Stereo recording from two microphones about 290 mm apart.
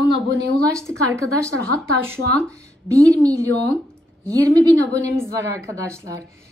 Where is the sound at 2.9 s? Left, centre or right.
Centre.